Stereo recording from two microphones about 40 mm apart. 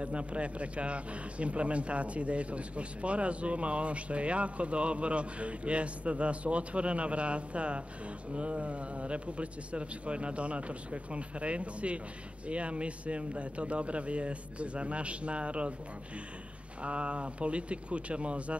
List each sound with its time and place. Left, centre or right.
0.0 s speech: right
16.8 s speech: right